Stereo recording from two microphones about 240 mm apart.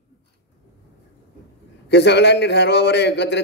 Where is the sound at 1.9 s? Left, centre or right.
Left.